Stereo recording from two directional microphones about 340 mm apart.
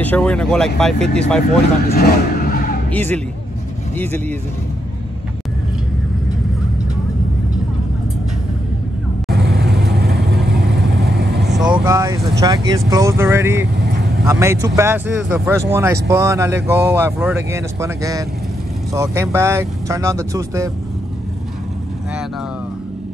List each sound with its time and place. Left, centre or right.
0.0 s speech: centre
1.9 s vehicle: left
2.9 s speech: centre
9.9 s vehicle: right
11.4 s vehicle: centre
11.7 s speech: centre